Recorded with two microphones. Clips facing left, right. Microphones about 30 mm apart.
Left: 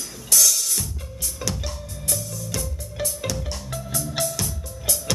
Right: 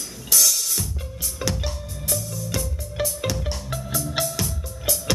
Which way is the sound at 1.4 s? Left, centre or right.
Centre.